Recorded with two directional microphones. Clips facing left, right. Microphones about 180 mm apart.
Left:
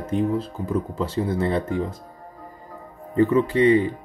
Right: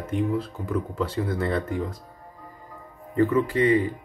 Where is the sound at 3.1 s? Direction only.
25° left (ahead or behind).